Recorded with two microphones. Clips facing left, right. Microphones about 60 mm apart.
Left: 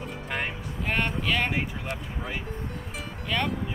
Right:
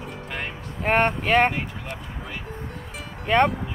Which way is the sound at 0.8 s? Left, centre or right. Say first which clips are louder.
Right 7 dB; right.